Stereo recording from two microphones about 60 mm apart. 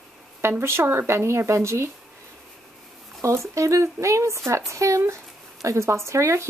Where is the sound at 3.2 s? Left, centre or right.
Right.